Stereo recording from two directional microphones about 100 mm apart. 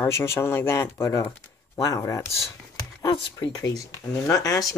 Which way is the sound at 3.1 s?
50° left (ahead or behind).